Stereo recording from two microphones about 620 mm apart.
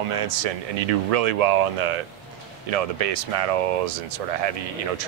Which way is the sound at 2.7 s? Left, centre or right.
Right.